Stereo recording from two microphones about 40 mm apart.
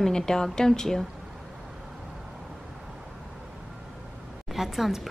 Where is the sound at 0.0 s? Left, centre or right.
Centre.